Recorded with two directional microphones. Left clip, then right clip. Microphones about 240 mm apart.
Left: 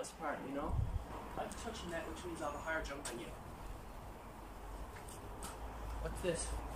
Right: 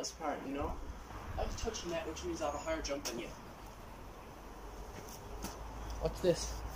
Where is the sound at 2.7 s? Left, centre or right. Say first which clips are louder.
Left 2 dB; centre.